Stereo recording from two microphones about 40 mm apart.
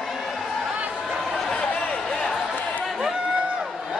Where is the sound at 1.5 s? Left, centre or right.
Left.